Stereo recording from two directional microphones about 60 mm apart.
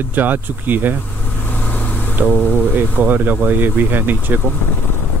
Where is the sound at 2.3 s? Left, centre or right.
Right.